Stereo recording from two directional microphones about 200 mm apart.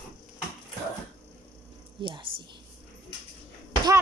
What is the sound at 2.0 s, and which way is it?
Speech, 25° right (ahead or behind).